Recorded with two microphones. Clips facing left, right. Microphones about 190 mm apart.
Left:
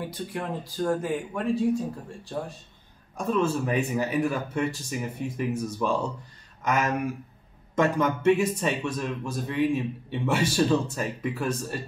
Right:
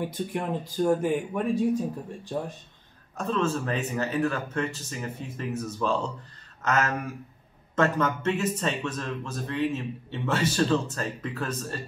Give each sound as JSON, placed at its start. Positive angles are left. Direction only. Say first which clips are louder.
{"t": 0.3, "sound": "speech", "louder": "right 2 dB", "side_deg": -20}
{"t": 3.2, "sound": "speech", "louder": "left 2 dB", "side_deg": 10}